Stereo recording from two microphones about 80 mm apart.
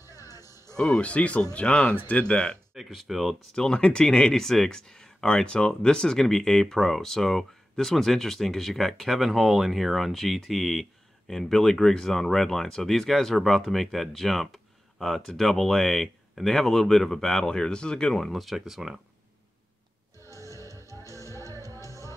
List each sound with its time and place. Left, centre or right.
0.0 s music: left
0.7 s speech: centre
2.7 s speech: centre
20.3 s music: left